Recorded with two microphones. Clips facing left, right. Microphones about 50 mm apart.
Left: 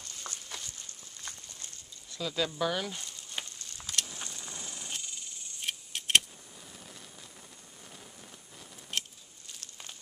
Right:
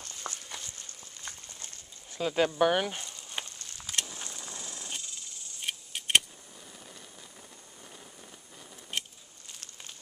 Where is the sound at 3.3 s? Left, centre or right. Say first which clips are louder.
Right 1 dB; centre.